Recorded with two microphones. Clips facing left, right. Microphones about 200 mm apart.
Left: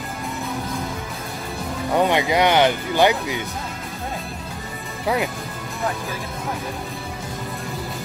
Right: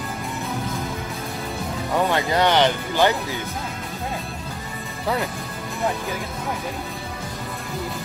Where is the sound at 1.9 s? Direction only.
15° left (ahead or behind).